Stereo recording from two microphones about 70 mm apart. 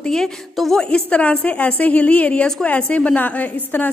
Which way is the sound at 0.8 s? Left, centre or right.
Centre.